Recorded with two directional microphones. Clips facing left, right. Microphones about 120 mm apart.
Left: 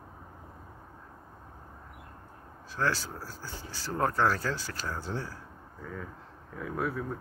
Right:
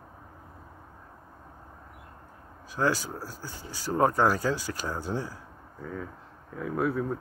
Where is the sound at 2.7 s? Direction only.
15° right (ahead or behind).